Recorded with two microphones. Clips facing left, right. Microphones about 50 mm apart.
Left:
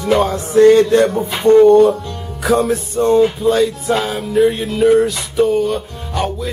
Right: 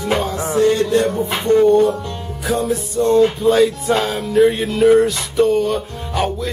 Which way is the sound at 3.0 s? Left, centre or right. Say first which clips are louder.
Left 1 dB; left.